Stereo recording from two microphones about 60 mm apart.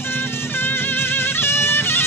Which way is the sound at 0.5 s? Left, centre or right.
Left.